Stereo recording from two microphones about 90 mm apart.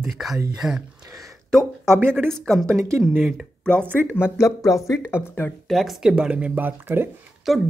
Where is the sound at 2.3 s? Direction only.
5° left (ahead or behind).